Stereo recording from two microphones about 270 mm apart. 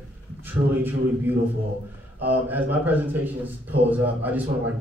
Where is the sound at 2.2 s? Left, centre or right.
Centre.